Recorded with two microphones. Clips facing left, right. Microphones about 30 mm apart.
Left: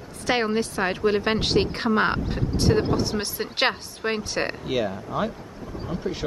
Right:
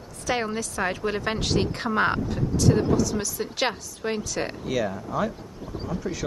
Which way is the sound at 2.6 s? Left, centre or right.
Left.